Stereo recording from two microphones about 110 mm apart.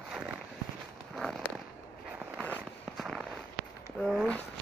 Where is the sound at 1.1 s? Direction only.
Centre (ahead or behind).